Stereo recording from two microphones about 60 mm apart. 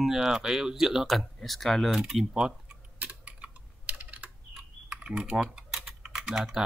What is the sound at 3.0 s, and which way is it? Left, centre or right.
Typing, right.